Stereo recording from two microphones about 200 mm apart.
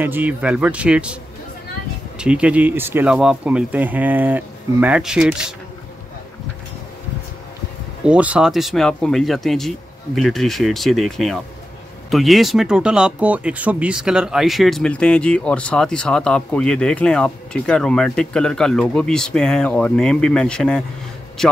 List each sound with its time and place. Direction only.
0.0 s speech: 10° right (ahead or behind)
2.1 s speech: 5° right (ahead or behind)
8.0 s speech: 5° right (ahead or behind)